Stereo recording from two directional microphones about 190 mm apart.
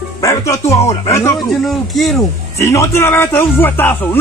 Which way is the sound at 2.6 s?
15° left (ahead or behind).